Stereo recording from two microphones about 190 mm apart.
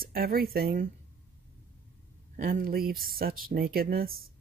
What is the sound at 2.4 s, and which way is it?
Speech, 50° right (ahead or behind).